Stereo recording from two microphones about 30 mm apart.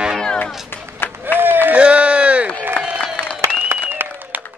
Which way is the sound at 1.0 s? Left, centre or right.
Left.